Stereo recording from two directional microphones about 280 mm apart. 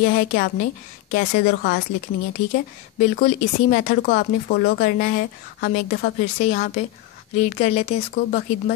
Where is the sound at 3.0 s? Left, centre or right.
Left.